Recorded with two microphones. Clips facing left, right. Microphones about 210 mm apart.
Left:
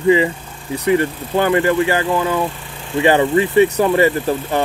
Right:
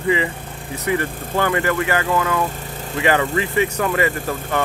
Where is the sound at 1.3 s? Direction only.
25° left (ahead or behind).